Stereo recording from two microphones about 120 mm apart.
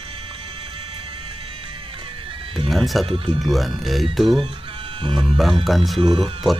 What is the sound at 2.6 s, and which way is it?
Speech, centre (ahead or behind).